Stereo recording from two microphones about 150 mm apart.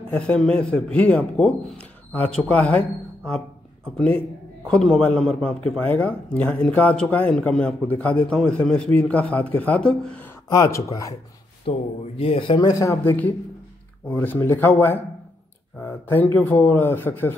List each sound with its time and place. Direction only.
0.1 s a man's voice: 10° left (ahead or behind)
10.5 s speech: 20° left (ahead or behind)
11.7 s a man's voice: 40° left (ahead or behind); by 17.3 s 15° left (ahead or behind)